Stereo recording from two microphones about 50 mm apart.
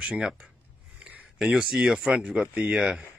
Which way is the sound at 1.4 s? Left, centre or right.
Centre.